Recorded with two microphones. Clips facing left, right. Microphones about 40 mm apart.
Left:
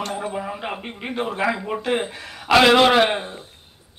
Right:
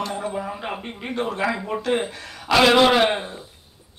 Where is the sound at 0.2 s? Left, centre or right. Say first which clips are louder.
Even; centre.